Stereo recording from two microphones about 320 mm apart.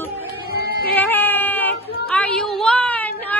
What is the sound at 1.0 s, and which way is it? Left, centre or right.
Baby cry, centre.